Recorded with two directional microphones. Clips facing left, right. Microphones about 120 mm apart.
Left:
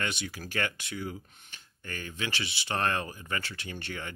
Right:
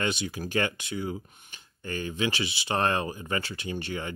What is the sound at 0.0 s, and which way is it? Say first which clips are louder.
Speech: right 5 dB; 20° right (ahead or behind).